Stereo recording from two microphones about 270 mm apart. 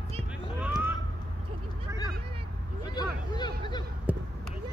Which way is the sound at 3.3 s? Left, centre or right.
Centre.